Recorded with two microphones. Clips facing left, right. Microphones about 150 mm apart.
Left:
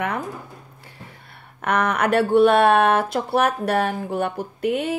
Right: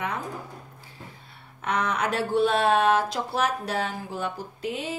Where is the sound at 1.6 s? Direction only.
60° left (ahead or behind).